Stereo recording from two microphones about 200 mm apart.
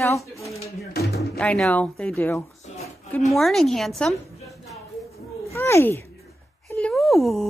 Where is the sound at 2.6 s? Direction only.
35° left (ahead or behind).